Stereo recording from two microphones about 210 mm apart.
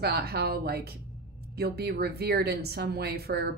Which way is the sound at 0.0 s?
50° right (ahead or behind).